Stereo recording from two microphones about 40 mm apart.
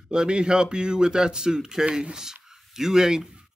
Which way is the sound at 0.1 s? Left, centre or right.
Right.